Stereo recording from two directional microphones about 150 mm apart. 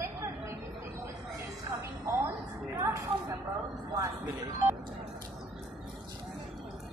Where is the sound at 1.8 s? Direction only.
20° right (ahead or behind).